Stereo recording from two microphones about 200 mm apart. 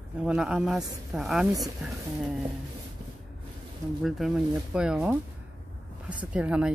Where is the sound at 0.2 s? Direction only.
5° right (ahead or behind).